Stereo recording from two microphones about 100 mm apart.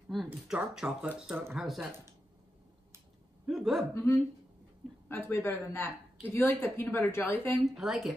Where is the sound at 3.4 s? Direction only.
Centre (ahead or behind).